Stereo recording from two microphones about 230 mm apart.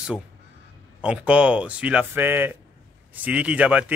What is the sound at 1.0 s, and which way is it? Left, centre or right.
Speech, centre.